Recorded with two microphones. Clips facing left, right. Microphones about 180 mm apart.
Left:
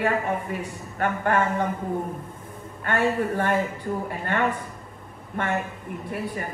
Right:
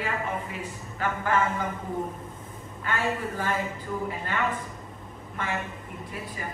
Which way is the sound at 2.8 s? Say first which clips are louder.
Left 6 dB; 60° left (ahead or behind).